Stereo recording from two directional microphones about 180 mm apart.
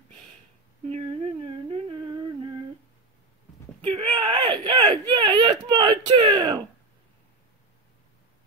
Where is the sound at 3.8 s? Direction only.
30° right (ahead or behind).